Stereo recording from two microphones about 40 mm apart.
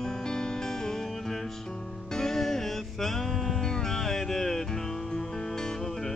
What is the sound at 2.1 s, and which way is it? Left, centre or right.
Music, centre.